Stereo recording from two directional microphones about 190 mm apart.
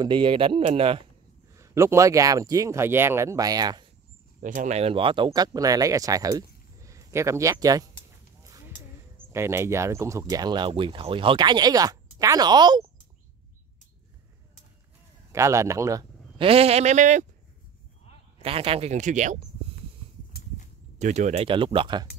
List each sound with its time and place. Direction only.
0.0 s speech: 25° right (ahead or behind)
1.5 s speech: 15° right (ahead or behind)
4.4 s speech: 45° right (ahead or behind); by 7.8 s 20° right (ahead or behind)
8.5 s a sound: 15° right (ahead or behind)
9.3 s speech: 15° right (ahead or behind)
15.3 s speech: 15° right (ahead or behind); by 17.3 s 40° right (ahead or behind)
18.4 s speech: 30° right (ahead or behind)
21.0 s speech: 40° right (ahead or behind)